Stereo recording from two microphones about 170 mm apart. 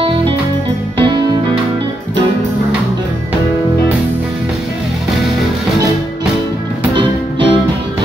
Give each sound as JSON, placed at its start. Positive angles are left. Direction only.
{"t": 0.9, "sound": "music", "side_deg": -25}
{"t": 7.0, "sound": "music", "side_deg": -30}